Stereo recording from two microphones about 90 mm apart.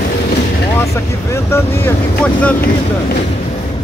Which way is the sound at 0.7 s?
30° left (ahead or behind).